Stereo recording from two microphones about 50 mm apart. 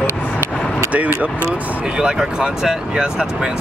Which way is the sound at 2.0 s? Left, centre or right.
Centre.